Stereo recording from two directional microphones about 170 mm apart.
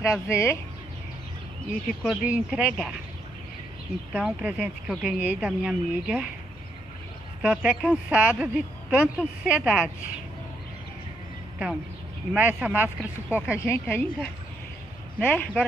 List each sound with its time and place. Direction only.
0.0 s a woman's voice: 15° left (ahead or behind)
1.7 s speech: 5° right (ahead or behind)
4.1 s speech: 5° right (ahead or behind)
7.4 s speech: 5° right (ahead or behind)
12.4 s speech: 10° right (ahead or behind)
13.6 s a woman's voice: 15° left (ahead or behind)